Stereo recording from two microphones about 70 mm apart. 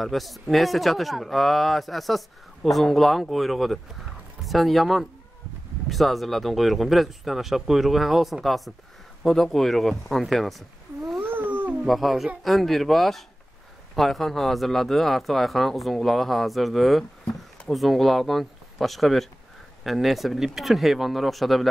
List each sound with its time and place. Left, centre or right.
0.0 s speech: centre
11.2 s cat: right
11.8 s speech: centre